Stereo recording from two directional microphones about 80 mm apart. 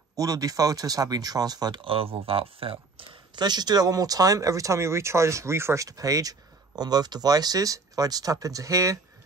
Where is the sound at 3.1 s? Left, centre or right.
Right.